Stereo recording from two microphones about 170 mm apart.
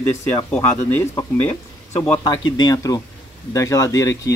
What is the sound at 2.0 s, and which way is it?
Speech, 25° left (ahead or behind).